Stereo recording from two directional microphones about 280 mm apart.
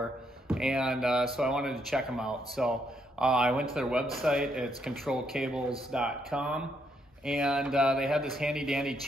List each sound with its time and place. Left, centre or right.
0.5 s speech: centre